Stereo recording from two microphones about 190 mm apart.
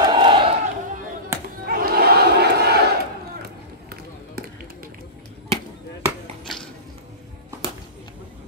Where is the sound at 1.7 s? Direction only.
50° right (ahead or behind).